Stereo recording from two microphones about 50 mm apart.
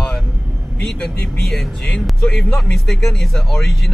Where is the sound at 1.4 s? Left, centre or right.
Centre.